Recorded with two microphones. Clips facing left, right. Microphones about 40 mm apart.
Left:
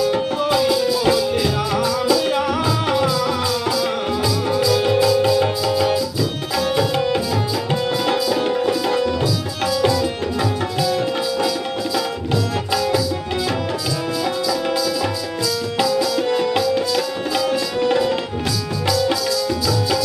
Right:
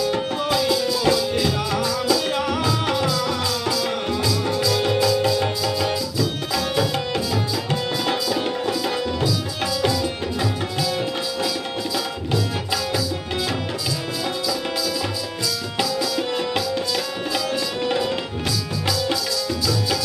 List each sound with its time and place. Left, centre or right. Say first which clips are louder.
0.0 s music: left 4 dB; centre
6.7 s tabla: left 6 dB; centre
9.8 s music: left 4 dB; centre
10.8 s tabla: left 5 dB; centre
15.8 s music: left 4 dB; centre
17.7 s tabla: left 6 dB; centre
18.9 s music: left 5 dB; centre